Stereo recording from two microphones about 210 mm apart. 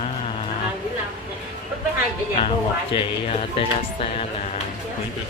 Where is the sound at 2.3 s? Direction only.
25° left (ahead or behind).